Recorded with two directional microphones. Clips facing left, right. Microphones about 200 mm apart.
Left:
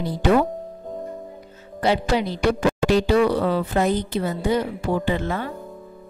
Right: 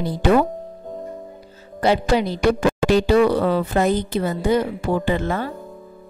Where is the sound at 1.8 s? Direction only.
45° right (ahead or behind).